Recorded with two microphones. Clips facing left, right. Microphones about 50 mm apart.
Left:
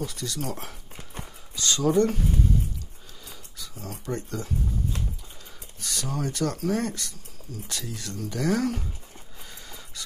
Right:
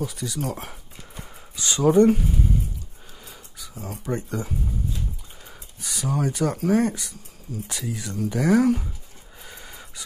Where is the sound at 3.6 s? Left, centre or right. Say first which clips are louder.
Right 3 dB; centre.